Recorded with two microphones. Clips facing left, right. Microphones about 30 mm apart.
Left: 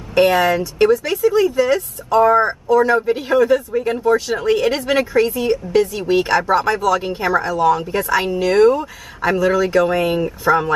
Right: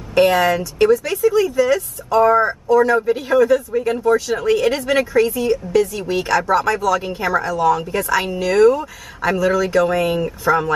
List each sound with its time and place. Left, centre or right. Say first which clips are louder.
0.1 s speech: even; centre; by 2.5 s left
2.7 s speech: even; centre